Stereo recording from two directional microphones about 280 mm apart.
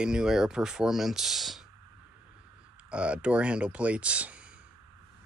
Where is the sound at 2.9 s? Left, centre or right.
Centre.